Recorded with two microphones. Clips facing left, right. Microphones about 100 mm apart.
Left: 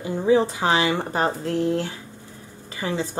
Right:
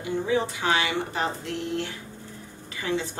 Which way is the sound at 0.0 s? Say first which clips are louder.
Left 6 dB; 35° left (ahead or behind).